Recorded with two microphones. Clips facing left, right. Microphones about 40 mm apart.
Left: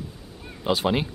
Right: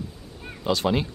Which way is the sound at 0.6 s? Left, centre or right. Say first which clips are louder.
Even; centre.